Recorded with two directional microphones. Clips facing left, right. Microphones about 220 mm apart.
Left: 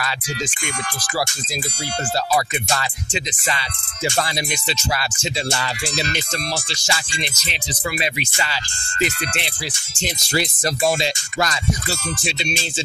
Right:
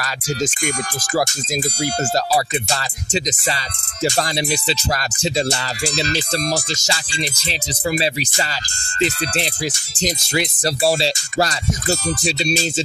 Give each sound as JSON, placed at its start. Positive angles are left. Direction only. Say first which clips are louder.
{"t": 2.1, "sound": "speech", "louder": "left 1 dB", "side_deg": -35}